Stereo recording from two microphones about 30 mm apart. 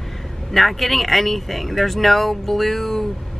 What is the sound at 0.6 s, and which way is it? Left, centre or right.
Speech, centre.